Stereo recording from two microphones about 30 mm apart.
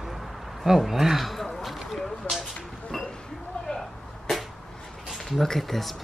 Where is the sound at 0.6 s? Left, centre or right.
Centre.